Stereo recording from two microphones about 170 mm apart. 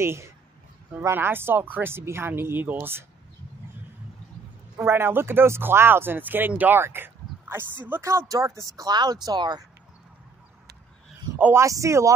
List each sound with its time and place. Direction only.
0.0 s speech: 15° right (ahead or behind)
4.7 s speech: 15° right (ahead or behind)
11.3 s speech: 15° right (ahead or behind)